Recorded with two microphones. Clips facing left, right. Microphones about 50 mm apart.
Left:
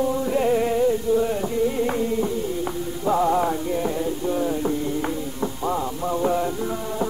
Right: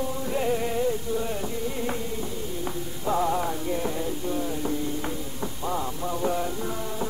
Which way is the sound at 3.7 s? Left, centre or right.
Centre.